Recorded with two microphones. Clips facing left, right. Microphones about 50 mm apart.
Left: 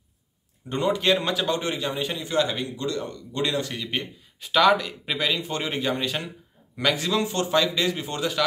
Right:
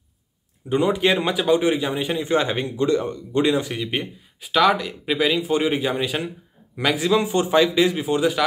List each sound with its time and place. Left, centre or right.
0.7 s a man's voice: centre